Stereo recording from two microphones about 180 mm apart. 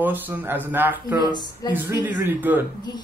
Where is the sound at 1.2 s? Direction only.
25° left (ahead or behind).